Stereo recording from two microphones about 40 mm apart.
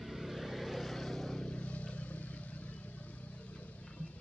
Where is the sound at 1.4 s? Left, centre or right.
Left.